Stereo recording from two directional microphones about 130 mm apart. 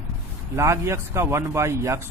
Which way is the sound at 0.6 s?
20° right (ahead or behind).